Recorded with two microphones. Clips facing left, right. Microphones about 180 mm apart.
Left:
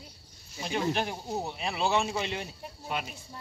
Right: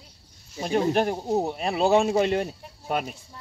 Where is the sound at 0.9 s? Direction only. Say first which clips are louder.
Right 8 dB; 45° right (ahead or behind).